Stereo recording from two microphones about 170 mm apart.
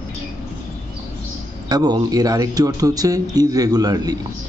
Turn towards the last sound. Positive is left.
turn(degrees=-20)  # may be behind; listen again after turning